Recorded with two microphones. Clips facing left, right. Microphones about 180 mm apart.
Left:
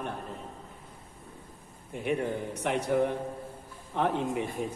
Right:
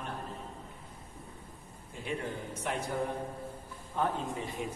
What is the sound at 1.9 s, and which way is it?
Speech, 65° left (ahead or behind).